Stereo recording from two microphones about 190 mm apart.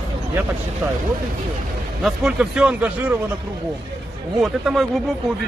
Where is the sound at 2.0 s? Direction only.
5° right (ahead or behind).